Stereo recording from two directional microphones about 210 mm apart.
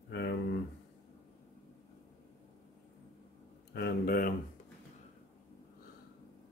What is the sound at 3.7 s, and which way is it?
Speech, 50° left (ahead or behind).